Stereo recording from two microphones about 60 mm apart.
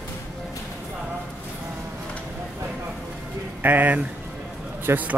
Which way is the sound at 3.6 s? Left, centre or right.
Right.